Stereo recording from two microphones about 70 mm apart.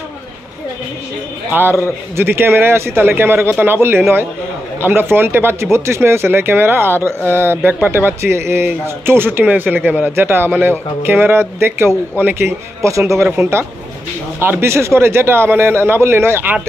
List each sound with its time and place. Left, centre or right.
1.5 s a man's voice: right
10.1 s speech: right